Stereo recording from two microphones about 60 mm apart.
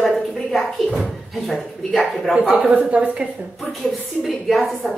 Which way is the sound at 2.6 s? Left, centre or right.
Right.